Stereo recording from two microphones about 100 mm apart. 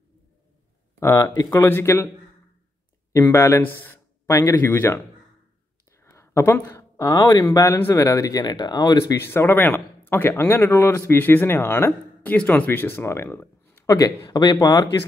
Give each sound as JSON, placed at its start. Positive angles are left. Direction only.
{"t": 0.9, "sound": "speech", "side_deg": 30}
{"t": 3.2, "sound": "speech", "side_deg": 25}
{"t": 6.0, "sound": "a sound", "side_deg": 30}
{"t": 7.3, "sound": "speech", "side_deg": 35}
{"t": 9.0, "sound": "speech", "side_deg": 25}
{"t": 13.8, "sound": "speech", "side_deg": 35}